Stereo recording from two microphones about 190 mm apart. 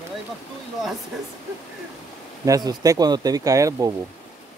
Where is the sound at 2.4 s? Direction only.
20° right (ahead or behind).